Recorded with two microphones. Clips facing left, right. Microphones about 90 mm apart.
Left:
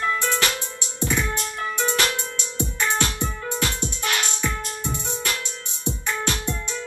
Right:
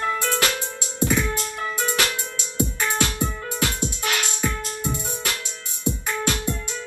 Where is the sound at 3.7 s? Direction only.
20° right (ahead or behind).